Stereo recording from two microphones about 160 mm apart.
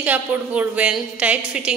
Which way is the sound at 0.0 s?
10° right (ahead or behind).